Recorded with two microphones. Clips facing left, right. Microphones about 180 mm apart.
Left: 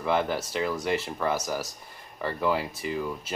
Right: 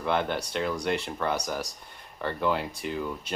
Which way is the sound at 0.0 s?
Centre (ahead or behind).